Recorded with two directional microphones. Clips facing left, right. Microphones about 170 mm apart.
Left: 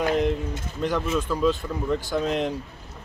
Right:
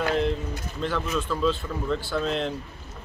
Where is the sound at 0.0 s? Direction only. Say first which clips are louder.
Left 2 dB; 15° left (ahead or behind).